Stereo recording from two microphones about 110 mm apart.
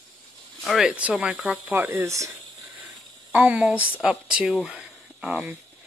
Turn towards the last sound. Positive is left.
turn(degrees=0)  # may be behind; listen again after turning